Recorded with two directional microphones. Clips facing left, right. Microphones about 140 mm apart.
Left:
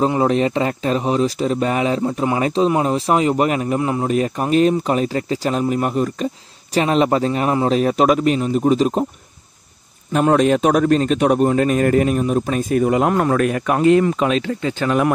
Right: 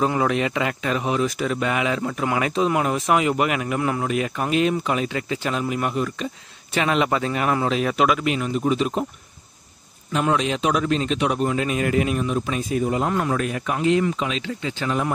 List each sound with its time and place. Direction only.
0.0 s speech: 30° left (ahead or behind)
10.1 s a man's voice: 45° left (ahead or behind); by 13.1 s 65° left (ahead or behind)
13.1 s a man's voice: 55° left (ahead or behind)